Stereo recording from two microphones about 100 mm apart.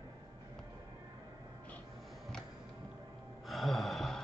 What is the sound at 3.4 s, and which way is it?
Gasp, centre (ahead or behind).